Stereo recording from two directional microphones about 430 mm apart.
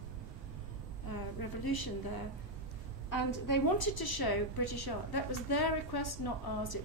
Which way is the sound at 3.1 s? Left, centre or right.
Left.